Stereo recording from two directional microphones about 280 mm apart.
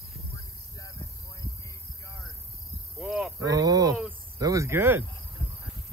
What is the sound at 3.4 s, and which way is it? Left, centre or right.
Cricket, centre.